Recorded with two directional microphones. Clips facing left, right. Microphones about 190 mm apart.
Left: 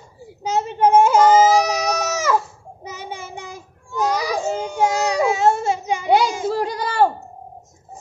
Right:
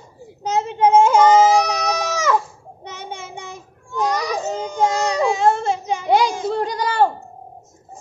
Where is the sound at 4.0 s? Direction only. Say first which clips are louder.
Even; 5° left (ahead or behind).